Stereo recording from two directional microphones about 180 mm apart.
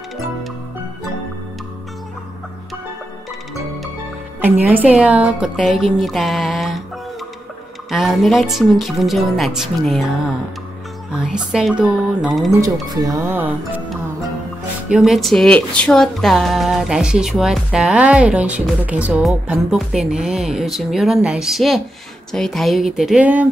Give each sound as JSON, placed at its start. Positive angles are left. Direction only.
{"t": 4.4, "sound": "speech", "side_deg": -10}
{"t": 7.9, "sound": "speech", "side_deg": 0}
{"t": 11.1, "sound": "speech", "side_deg": -5}
{"t": 12.8, "sound": "speech", "side_deg": -20}